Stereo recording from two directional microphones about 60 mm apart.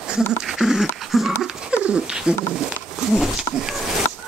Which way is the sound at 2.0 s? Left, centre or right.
Centre.